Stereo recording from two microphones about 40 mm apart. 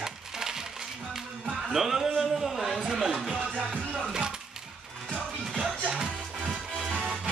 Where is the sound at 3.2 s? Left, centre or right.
Centre.